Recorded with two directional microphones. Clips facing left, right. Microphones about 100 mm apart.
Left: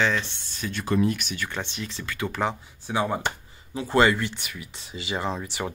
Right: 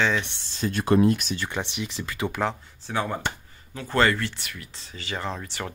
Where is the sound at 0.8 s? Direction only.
50° right (ahead or behind).